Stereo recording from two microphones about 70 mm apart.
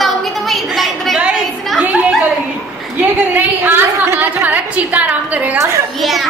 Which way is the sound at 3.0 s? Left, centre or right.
Right.